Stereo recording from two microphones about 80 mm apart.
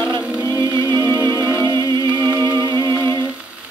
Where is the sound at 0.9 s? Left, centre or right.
Right.